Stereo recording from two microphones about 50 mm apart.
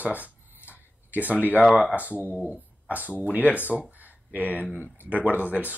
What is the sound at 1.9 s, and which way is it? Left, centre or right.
Speech, right.